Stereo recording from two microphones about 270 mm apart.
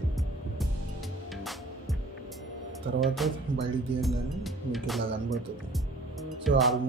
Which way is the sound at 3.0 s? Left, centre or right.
Centre.